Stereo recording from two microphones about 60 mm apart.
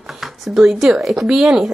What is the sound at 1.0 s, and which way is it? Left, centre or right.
Speech, centre.